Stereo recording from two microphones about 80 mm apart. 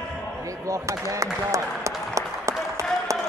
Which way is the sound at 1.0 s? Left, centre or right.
Right.